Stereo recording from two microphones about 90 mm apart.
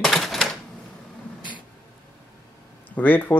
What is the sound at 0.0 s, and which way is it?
Typewriter, centre (ahead or behind).